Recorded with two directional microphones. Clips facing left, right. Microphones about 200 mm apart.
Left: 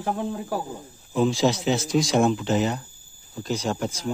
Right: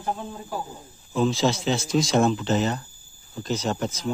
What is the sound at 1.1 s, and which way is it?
Speech, 15° left (ahead or behind).